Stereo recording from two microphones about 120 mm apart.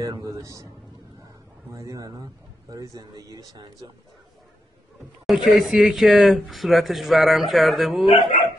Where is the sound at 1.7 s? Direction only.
25° right (ahead or behind).